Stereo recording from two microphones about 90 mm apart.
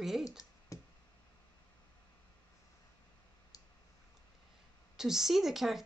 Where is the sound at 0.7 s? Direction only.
40° left (ahead or behind).